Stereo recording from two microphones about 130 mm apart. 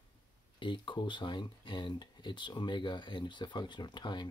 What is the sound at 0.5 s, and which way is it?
Speech, 40° left (ahead or behind).